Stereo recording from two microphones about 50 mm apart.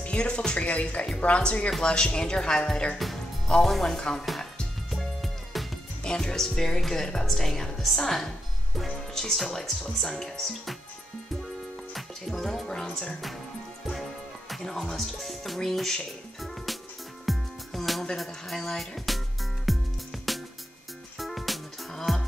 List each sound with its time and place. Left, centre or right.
0.0 s speech: left
0.6 s speech: left; by 4.2 s centre
5.2 s music: centre
6.0 s speech: centre
11.9 s music: centre
14.5 s speech: centre
17.3 s music: centre